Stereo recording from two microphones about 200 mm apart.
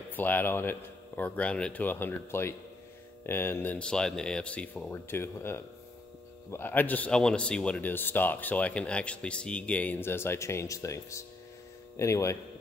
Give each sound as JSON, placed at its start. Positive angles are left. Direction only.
{"t": 0.1, "sound": "speech", "side_deg": 10}